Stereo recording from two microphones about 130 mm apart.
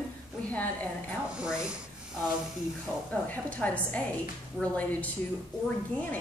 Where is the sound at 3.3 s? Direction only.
10° left (ahead or behind).